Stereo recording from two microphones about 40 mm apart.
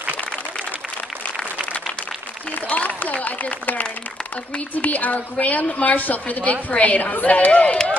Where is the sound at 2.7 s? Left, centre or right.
Left.